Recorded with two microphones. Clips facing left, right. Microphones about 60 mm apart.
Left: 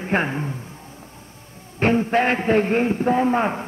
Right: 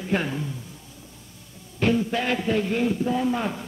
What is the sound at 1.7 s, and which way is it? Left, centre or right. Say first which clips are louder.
A man's voice: left 5 dB; left.